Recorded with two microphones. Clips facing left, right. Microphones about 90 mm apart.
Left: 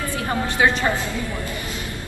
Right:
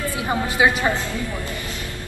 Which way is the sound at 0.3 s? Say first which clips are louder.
Right 1 dB; 10° right (ahead or behind).